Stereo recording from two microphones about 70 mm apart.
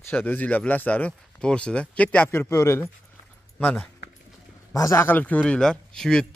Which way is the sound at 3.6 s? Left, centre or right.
Centre.